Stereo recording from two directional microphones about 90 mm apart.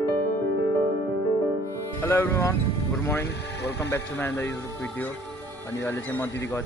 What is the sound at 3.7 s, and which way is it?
Speech, 30° left (ahead or behind).